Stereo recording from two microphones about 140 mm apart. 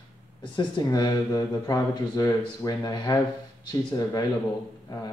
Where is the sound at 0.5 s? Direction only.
30° left (ahead or behind).